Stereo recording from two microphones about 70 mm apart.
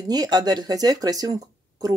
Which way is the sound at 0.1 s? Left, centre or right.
Right.